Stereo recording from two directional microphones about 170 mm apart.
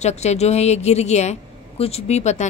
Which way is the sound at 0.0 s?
40° left (ahead or behind).